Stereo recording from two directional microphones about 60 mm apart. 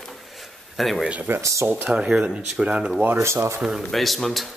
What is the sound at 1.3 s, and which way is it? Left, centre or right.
Speech, right.